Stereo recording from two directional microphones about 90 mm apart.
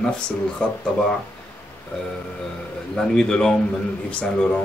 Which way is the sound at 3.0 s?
10° left (ahead or behind).